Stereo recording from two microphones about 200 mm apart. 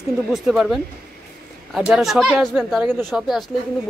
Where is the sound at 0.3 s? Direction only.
Centre (ahead or behind).